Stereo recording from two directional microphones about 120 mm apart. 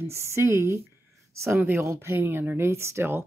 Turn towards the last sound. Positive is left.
turn(degrees=-20)  # may be behind; listen again after turning